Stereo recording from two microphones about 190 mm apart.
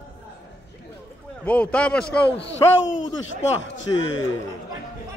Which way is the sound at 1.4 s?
10° left (ahead or behind).